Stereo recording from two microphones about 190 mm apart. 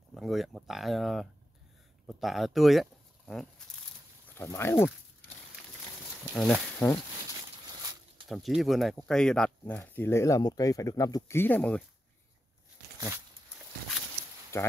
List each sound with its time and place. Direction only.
0.1 s speech: centre (ahead or behind)
2.0 s a sound: centre (ahead or behind)
4.4 s speech: 15° left (ahead or behind)
6.3 s speech: 5° left (ahead or behind)
7.8 s a sound: 20° right (ahead or behind)
8.3 s speech: centre (ahead or behind)
14.5 s speech: 15° left (ahead or behind)